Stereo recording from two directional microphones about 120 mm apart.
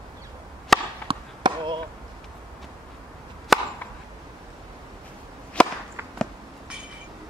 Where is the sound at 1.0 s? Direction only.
45° right (ahead or behind).